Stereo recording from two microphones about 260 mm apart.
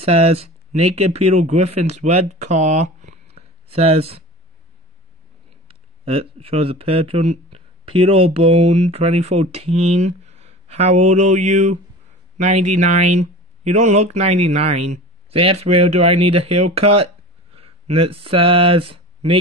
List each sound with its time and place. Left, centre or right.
0.0 s speech: right
5.7 s speech: right